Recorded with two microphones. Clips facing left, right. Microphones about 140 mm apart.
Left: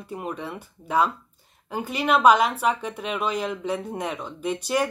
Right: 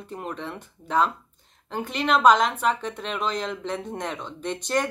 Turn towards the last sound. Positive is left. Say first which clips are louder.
# left 2 dB
turn(degrees=10)  # may be behind; listen again after turning